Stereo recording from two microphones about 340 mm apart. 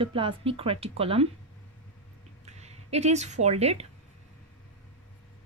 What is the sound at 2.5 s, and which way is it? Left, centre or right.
Speech, centre.